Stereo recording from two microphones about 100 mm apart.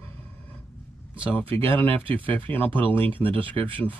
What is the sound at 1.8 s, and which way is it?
Speech, 65° right (ahead or behind).